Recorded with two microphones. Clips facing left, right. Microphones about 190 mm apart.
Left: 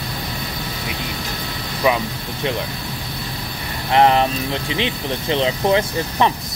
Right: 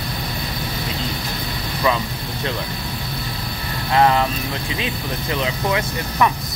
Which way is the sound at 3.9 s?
25° left (ahead or behind).